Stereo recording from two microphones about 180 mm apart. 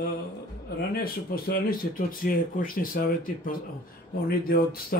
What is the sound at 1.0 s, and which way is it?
Speech, 55° left (ahead or behind).